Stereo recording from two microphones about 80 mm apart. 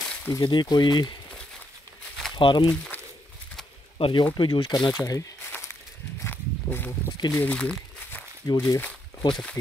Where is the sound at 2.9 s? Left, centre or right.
Left.